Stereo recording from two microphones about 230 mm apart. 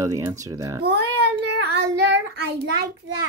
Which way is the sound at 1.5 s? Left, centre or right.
Right.